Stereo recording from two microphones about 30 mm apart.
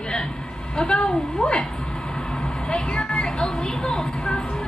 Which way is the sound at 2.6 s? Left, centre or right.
Left.